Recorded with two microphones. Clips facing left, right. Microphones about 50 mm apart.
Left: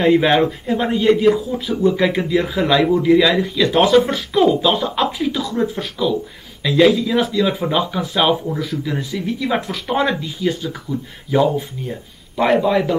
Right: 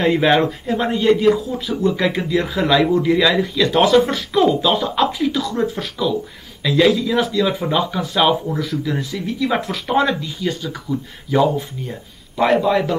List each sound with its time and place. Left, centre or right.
0.0 s a man's voice: centre